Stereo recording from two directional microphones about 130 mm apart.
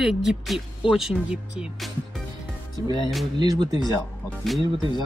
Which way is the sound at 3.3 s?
30° right (ahead or behind).